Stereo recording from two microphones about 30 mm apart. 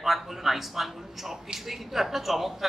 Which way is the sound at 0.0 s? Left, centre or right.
Centre.